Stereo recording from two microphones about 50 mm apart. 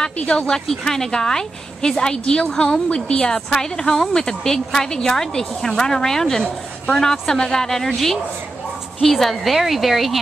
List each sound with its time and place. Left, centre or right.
0.2 s speech: centre
9.0 s a woman's voice: centre